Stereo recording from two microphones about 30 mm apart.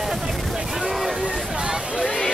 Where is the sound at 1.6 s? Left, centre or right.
Right.